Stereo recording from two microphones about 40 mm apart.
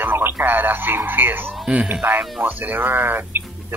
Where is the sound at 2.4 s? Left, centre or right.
Right.